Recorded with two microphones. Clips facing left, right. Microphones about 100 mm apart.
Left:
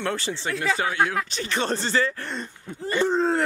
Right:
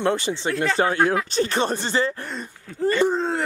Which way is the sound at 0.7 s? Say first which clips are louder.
Right 4 dB; 35° right (ahead or behind).